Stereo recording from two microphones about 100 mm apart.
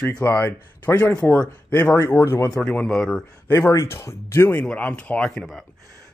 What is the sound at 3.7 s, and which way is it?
Speech, 30° left (ahead or behind).